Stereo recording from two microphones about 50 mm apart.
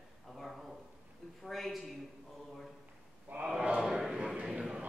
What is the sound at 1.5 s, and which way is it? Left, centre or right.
Speech, centre.